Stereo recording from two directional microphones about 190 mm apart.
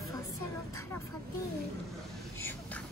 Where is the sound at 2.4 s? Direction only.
10° left (ahead or behind).